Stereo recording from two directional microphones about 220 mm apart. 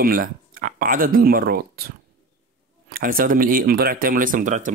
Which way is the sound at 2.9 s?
40° right (ahead or behind).